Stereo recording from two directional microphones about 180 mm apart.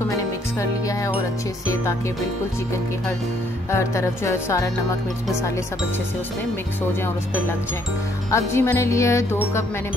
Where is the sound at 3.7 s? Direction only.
15° left (ahead or behind).